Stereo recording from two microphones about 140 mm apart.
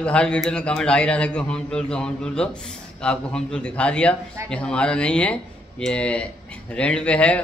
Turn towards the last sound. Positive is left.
turn(degrees=10)  # may be behind; listen again after turning